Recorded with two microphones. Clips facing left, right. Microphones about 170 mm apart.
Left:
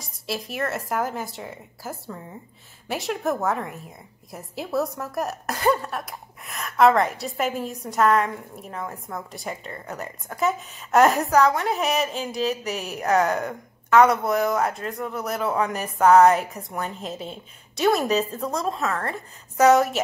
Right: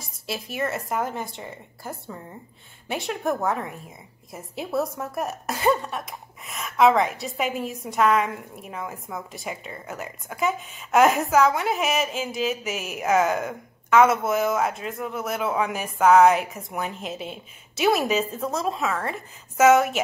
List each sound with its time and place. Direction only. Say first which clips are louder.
0.0 s a woman's voice: left 2 dB; centre (ahead or behind)